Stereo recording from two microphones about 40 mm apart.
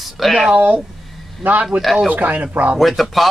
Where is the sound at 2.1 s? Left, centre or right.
Right.